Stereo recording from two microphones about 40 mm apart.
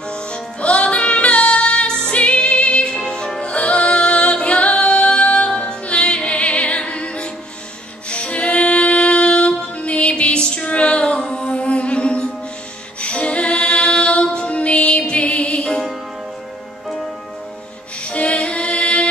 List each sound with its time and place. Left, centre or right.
0.1 s music: left
13.0 s a capella: left
18.0 s music: left